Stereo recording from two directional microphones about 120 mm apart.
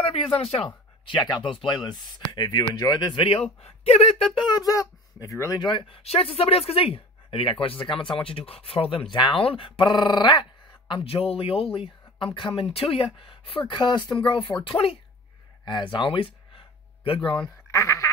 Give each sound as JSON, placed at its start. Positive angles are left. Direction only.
{"t": 0.0, "sound": "speech", "side_deg": 55}
{"t": 1.0, "sound": "speech", "side_deg": 40}
{"t": 3.6, "sound": "speech", "side_deg": 60}
{"t": 4.5, "sound": "speech", "side_deg": 30}
{"t": 5.7, "sound": "speech", "side_deg": 40}
{"t": 6.0, "sound": "speech", "side_deg": 55}
{"t": 10.9, "sound": "speech", "side_deg": 50}
{"t": 17.6, "sound": "speech", "side_deg": 25}